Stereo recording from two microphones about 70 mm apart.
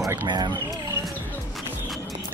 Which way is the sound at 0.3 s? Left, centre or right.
Right.